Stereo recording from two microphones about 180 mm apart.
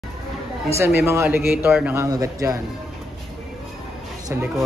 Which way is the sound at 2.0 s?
20° right (ahead or behind).